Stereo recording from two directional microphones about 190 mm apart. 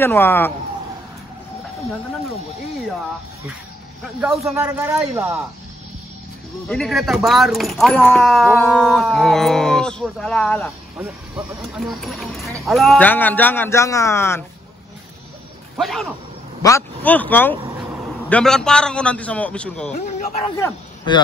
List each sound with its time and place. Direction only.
0.0 s a man's voice: 10° left (ahead or behind)
4.6 s speech: 15° right (ahead or behind)
6.7 s speech: centre (ahead or behind)
11.0 s a man's voice: 5° right (ahead or behind); by 14.4 s 15° left (ahead or behind)
15.8 s speech: centre (ahead or behind)
16.6 s a man's voice: 10° left (ahead or behind)
19.9 s speech: 45° left (ahead or behind)
20.4 s a man's voice: 20° left (ahead or behind)